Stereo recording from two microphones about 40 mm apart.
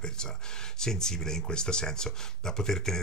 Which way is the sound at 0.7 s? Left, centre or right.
Centre.